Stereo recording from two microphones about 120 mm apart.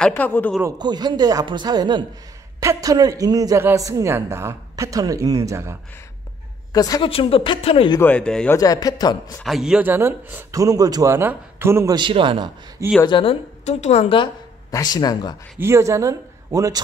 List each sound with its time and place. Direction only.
0.1 s speech: 15° left (ahead or behind)
0.7 s speech: 35° right (ahead or behind)
2.6 s speech: 25° right (ahead or behind)
6.7 s a woman's voice: 30° left (ahead or behind)
7.0 s speech: 50° left (ahead or behind)
8.0 s speech: 10° left (ahead or behind)
8.5 s a man's voice: 30° left (ahead or behind)
9.4 s speech: centre (ahead or behind); by 11.1 s 30° right (ahead or behind)
11.1 s speech: 20° right (ahead or behind)
11.9 s a man's voice: 45° right (ahead or behind)
13.0 s speech: 45° left (ahead or behind)
13.7 s a woman's voice: 70° left (ahead or behind)
14.7 s a man's voice: 35° left (ahead or behind)
15.6 s speech: 25° right (ahead or behind)